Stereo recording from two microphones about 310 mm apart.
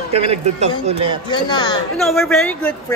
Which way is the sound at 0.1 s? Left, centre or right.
Centre.